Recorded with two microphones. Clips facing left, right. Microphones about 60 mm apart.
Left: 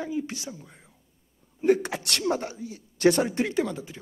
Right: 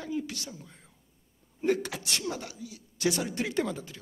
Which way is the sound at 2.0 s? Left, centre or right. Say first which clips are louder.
Left 4 dB; left.